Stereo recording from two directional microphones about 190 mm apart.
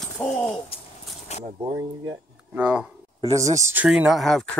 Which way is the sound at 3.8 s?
5° right (ahead or behind).